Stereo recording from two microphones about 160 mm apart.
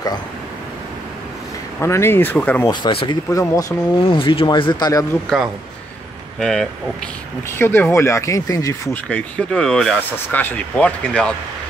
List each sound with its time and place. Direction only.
1.8 s speech: 15° left (ahead or behind)
2.7 s speech: 30° left (ahead or behind)
3.3 s speech: 20° left (ahead or behind)
4.2 s a man's voice: 35° left (ahead or behind)
6.4 s speech: 5° left (ahead or behind)
7.5 s speech: 15° left (ahead or behind)
9.1 s speech: 5° left (ahead or behind)